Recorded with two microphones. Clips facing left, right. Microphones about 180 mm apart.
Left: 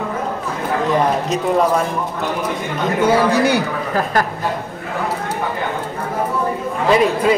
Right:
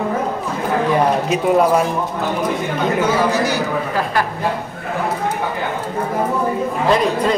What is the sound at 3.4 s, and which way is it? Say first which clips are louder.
Speech: left 2 dB; 45° left (ahead or behind).